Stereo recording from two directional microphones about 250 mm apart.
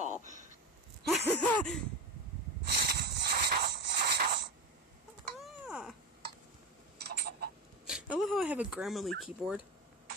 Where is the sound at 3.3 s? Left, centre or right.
Right.